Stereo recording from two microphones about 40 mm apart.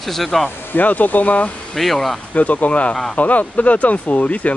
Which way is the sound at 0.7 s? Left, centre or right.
Left.